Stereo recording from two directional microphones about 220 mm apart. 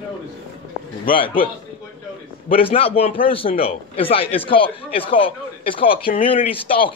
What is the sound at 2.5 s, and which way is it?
A man's voice, 25° left (ahead or behind).